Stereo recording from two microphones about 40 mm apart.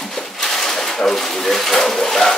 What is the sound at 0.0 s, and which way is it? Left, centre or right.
Speech, centre.